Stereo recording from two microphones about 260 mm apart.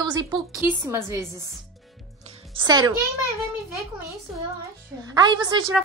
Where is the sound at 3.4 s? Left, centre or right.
Centre.